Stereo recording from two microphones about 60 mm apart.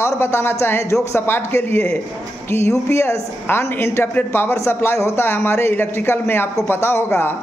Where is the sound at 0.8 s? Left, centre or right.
Left.